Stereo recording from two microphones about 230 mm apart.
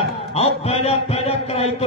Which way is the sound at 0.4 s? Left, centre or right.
Left.